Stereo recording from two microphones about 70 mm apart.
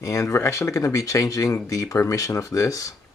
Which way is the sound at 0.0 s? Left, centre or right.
Left.